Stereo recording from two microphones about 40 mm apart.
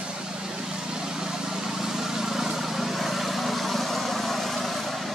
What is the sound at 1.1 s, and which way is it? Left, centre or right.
Vehicle, centre.